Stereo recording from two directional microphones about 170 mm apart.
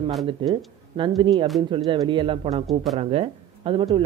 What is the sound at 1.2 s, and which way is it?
Speech, 30° right (ahead or behind).